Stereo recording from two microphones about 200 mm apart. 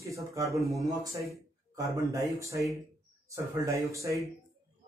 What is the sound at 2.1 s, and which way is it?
Speech, 15° right (ahead or behind).